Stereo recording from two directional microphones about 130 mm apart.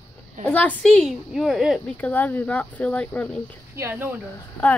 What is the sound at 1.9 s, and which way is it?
Speech, 15° left (ahead or behind).